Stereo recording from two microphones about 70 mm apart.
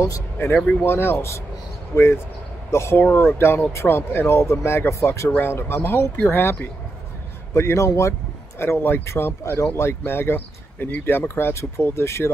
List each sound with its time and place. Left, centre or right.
0.8 s speech: left
3.0 s speech: left
7.5 s a man's voice: left
8.5 s speech: left